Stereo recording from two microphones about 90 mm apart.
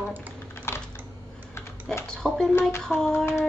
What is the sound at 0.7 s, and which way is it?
Typing, 30° left (ahead or behind).